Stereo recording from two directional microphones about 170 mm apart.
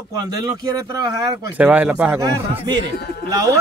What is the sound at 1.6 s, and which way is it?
Speech, 10° right (ahead or behind).